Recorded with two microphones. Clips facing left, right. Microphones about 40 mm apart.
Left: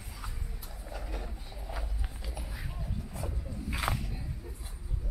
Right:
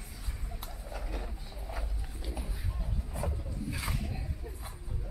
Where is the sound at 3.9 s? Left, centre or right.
Left.